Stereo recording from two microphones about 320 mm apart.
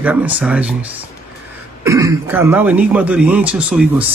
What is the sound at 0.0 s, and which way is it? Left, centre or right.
Speech, centre.